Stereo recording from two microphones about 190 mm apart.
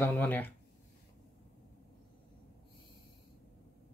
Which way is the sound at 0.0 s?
10° left (ahead or behind).